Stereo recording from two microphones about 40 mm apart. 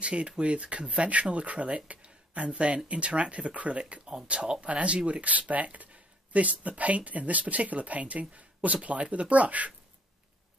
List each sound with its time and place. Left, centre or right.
0.0 s speech: right
1.9 s a sound: right
2.9 s speech: right